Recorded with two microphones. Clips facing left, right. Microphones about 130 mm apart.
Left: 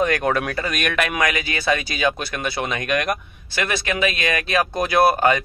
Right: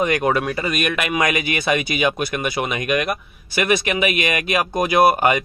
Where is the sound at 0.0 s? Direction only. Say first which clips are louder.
Right 1 dB; 15° right (ahead or behind).